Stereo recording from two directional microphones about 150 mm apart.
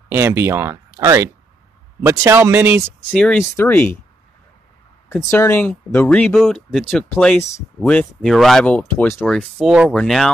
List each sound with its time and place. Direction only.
0.1 s speech: 15° right (ahead or behind)
3.1 s speech: 10° left (ahead or behind)
5.1 s speech: 15° left (ahead or behind)
9.7 s speech: 5° right (ahead or behind)